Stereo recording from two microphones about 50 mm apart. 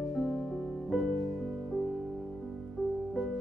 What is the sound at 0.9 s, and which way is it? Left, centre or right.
Music, centre.